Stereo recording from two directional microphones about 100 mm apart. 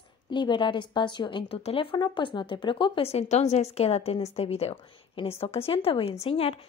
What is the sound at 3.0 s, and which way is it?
A woman's voice, 90° left.